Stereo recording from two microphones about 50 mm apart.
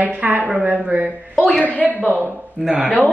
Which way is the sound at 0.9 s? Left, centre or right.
Right.